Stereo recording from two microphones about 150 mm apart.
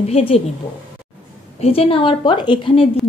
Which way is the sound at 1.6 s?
40° left (ahead or behind).